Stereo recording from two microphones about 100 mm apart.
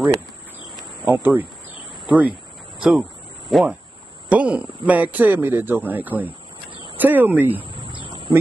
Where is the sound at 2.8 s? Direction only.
5° right (ahead or behind).